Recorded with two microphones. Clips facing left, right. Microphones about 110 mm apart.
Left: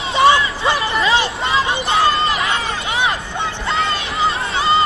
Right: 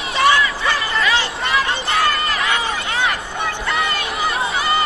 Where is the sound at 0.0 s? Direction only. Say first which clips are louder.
Left 3 dB; 25° left (ahead or behind).